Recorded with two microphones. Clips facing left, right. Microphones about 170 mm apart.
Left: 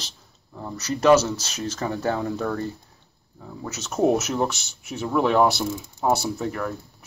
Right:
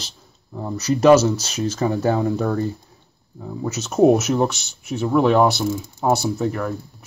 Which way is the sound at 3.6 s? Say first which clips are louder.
Right 6 dB; 15° right (ahead or behind).